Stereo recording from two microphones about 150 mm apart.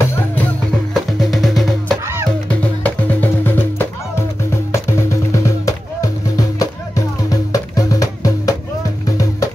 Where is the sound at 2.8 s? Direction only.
15° left (ahead or behind).